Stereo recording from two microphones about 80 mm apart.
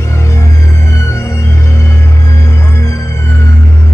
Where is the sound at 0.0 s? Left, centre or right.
Left.